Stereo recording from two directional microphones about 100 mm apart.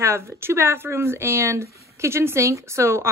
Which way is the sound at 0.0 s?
25° right (ahead or behind).